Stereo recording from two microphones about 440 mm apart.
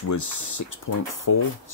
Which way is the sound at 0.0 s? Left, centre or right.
Left.